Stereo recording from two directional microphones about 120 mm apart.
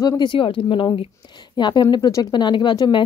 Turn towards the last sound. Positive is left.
turn(degrees=40)  # may be behind; listen again after turning